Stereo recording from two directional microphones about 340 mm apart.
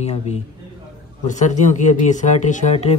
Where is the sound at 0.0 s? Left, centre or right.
Centre.